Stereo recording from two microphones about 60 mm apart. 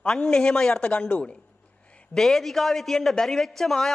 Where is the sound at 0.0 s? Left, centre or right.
Centre.